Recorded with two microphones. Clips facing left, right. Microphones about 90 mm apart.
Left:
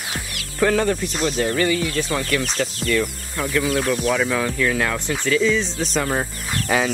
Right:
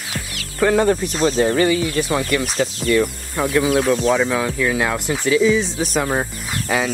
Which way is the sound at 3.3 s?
15° right (ahead or behind).